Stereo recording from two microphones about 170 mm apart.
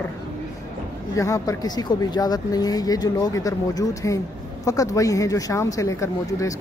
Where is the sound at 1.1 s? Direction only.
20° left (ahead or behind).